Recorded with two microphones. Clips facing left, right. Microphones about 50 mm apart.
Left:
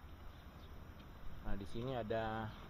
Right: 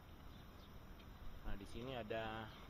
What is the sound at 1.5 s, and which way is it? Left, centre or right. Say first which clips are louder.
Speech: left 6 dB; left.